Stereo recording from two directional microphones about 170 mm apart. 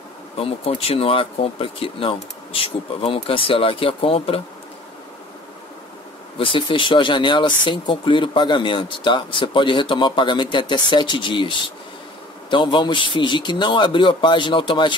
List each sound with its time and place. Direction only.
0.4 s speech: 35° left (ahead or behind)
6.3 s speech: 30° left (ahead or behind)